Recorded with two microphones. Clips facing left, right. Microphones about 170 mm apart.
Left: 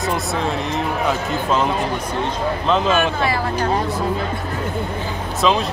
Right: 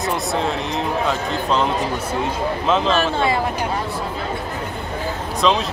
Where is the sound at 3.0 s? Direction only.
25° right (ahead or behind).